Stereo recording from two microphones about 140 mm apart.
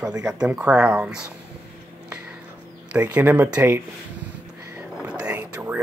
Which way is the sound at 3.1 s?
15° right (ahead or behind).